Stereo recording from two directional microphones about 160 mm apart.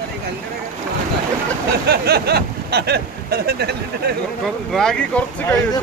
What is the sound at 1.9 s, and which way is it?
Speech, 85° right.